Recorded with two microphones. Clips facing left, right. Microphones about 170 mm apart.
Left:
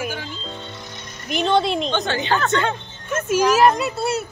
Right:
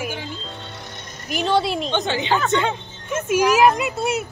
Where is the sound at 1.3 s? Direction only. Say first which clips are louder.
Left 1 dB; 5° right (ahead or behind).